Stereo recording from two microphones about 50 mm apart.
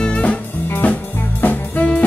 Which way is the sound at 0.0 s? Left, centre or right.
Left.